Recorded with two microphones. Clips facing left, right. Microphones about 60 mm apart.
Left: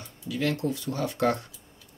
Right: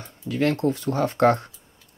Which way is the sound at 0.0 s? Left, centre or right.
Right.